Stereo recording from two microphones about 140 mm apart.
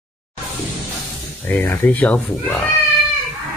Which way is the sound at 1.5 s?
15° left (ahead or behind).